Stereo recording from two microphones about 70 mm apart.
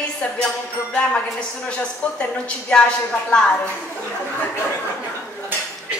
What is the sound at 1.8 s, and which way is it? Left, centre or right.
A woman's voice, centre.